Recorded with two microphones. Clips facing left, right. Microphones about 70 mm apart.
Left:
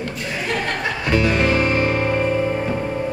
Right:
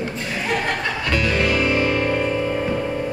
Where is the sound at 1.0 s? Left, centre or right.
Left.